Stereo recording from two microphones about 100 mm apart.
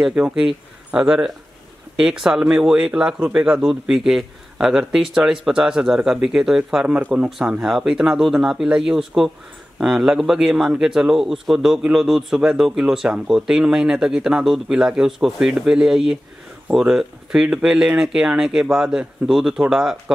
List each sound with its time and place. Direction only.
0.0 s a man's voice: 10° right (ahead or behind)